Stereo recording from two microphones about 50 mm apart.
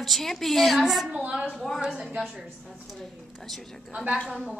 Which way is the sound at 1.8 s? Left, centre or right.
Centre.